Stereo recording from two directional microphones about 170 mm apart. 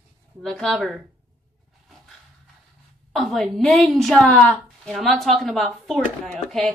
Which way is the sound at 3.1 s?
Centre (ahead or behind).